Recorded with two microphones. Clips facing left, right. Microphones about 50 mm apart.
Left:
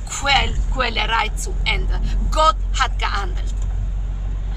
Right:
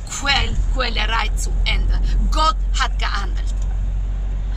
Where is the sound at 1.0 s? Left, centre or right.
Centre.